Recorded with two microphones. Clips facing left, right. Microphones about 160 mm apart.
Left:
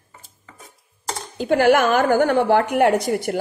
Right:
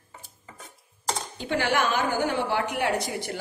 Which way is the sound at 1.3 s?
45° left (ahead or behind).